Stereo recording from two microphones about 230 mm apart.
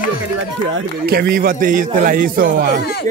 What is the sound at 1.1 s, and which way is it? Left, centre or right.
A man's voice, right.